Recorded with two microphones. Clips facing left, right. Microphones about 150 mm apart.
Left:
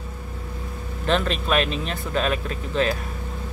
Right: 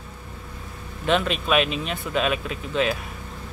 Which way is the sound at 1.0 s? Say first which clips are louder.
Even; 5° right (ahead or behind).